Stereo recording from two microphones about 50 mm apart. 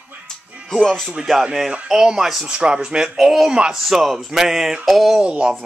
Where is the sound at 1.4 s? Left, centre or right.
Centre.